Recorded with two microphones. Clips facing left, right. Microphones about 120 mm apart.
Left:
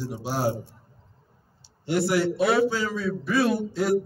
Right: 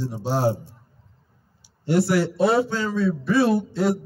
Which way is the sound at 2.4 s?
30° right (ahead or behind).